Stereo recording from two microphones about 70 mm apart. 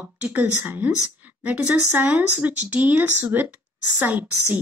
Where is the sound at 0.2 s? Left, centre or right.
Right.